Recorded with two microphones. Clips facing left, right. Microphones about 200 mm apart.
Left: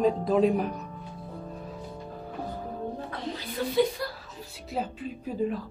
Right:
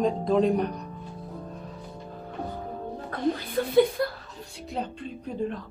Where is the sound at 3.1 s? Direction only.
55° right (ahead or behind).